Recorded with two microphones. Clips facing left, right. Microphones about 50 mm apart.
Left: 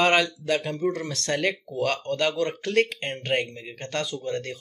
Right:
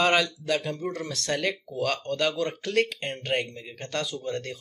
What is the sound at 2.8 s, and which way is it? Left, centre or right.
Speech, centre.